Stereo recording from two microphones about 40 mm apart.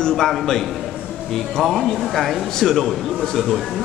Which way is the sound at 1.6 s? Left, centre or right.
Centre.